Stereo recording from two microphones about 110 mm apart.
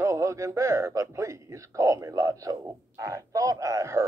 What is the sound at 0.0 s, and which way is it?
Speech, 25° right (ahead or behind).